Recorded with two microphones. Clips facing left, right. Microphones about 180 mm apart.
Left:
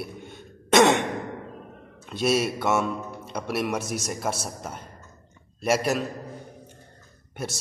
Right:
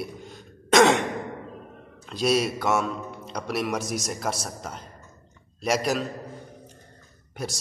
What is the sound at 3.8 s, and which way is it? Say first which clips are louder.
Speech: right 1 dB; 60° left (ahead or behind).